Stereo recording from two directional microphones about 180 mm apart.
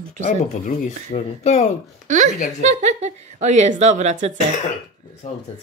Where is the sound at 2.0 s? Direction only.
40° right (ahead or behind).